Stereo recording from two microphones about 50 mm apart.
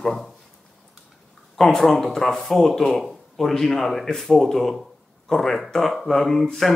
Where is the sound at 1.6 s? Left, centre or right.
Centre.